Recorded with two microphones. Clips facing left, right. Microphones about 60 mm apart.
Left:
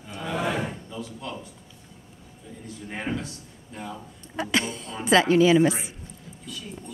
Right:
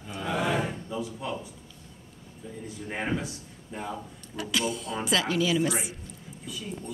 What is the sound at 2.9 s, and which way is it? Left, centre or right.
A man's voice, centre.